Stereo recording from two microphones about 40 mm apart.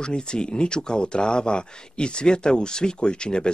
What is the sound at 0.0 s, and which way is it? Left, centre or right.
Speech, left.